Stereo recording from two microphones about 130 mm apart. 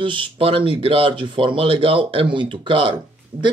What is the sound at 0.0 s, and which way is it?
Speech, 40° right (ahead or behind).